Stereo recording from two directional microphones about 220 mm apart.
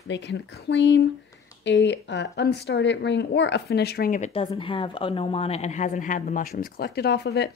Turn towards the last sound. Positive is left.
turn(degrees=50)  # may be behind; listen again after turning